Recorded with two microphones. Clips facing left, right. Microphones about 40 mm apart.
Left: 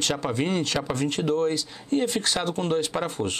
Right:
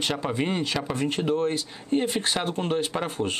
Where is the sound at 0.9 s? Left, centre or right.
Right.